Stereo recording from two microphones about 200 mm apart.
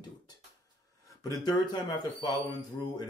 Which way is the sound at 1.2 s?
20° left (ahead or behind).